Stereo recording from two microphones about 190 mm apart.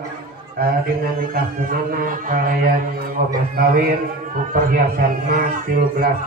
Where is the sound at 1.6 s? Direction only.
45° right (ahead or behind).